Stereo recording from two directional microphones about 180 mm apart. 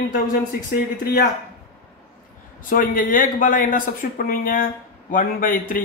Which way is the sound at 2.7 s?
50° left (ahead or behind).